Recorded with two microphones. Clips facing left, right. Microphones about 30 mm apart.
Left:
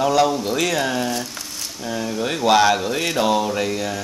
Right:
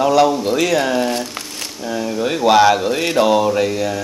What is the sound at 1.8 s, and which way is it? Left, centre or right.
Speech, centre.